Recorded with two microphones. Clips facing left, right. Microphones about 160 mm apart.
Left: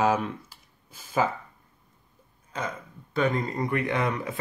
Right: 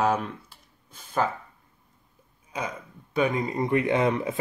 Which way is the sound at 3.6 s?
20° right (ahead or behind).